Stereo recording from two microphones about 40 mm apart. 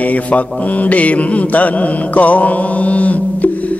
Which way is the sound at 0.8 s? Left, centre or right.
Left.